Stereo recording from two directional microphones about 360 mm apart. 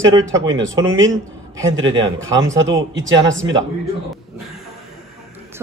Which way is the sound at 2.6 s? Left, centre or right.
Right.